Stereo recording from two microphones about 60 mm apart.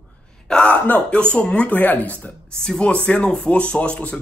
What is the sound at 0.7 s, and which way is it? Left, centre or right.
Speech, left.